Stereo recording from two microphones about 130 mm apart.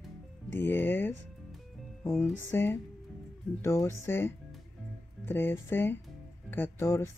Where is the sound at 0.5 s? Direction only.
15° left (ahead or behind).